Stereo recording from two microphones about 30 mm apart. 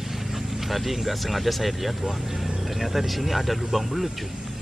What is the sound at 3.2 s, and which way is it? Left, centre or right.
Speech, centre.